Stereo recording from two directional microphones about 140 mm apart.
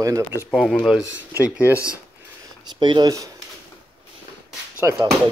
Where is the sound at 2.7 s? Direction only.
35° right (ahead or behind).